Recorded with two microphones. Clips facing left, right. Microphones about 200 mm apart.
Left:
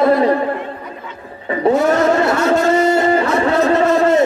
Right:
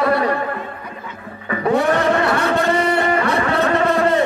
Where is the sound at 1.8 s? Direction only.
30° right (ahead or behind).